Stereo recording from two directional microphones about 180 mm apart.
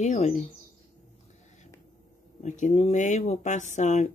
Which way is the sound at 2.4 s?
40° left (ahead or behind).